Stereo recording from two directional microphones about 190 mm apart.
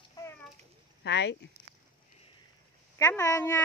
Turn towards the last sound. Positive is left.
turn(degrees=15)  # may be behind; listen again after turning